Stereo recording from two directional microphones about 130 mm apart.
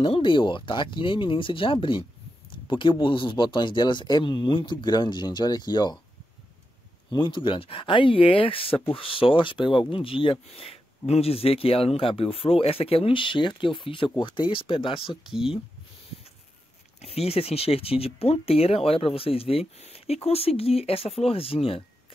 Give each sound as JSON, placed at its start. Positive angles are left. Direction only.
{"t": 0.0, "sound": "speech", "side_deg": 40}
{"t": 7.1, "sound": "speech", "side_deg": 40}
{"t": 17.0, "sound": "speech", "side_deg": 50}